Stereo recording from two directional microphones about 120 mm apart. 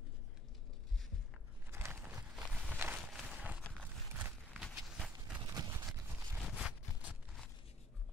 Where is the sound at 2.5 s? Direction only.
10° right (ahead or behind).